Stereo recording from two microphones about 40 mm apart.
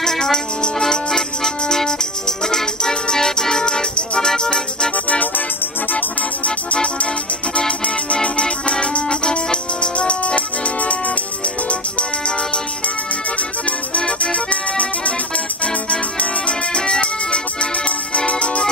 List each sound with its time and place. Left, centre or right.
0.0 s music: centre
5.9 s music: left
6.7 s music: left
13.4 s accordion: left